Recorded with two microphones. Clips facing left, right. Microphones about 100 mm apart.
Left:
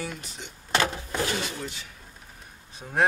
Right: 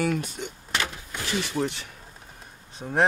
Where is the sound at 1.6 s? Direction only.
70° right (ahead or behind).